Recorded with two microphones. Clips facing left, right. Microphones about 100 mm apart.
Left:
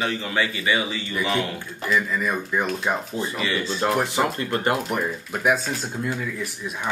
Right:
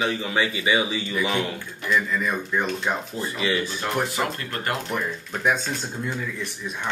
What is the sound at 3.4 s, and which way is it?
Speech, 15° right (ahead or behind).